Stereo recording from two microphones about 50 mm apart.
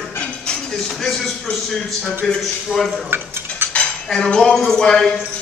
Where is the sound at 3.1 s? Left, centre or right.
Right.